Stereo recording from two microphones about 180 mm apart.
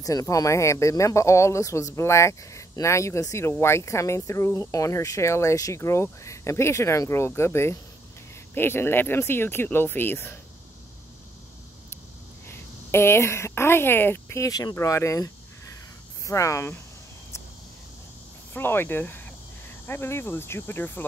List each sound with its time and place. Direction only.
0.0 s speech: 20° left (ahead or behind)
12.4 s speech: 15° left (ahead or behind)
18.5 s speech: 10° left (ahead or behind)